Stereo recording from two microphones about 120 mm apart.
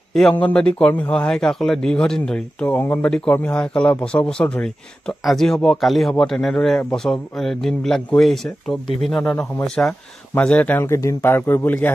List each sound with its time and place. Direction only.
0.1 s a man's voice: 5° left (ahead or behind)